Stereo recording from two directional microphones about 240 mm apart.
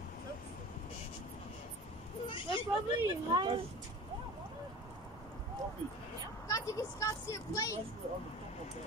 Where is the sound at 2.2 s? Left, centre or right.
Left.